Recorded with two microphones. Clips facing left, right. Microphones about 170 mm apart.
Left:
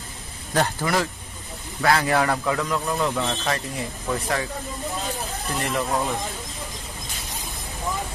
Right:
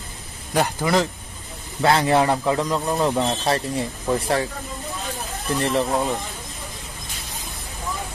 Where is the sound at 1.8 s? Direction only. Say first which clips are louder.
Right 3 dB; 25° right (ahead or behind).